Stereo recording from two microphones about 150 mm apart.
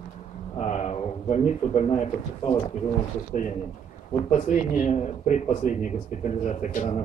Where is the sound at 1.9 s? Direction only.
35° left (ahead or behind).